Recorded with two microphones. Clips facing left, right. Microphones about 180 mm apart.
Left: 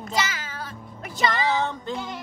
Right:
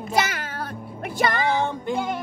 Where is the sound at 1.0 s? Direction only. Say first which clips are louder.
Right 2 dB; 55° right (ahead or behind).